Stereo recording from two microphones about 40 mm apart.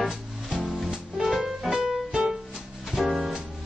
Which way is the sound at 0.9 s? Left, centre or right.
Centre.